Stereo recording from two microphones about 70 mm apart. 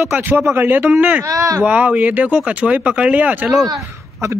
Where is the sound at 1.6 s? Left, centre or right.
Right.